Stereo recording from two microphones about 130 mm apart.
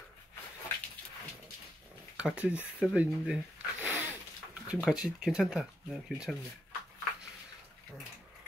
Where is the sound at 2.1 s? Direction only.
10° right (ahead or behind).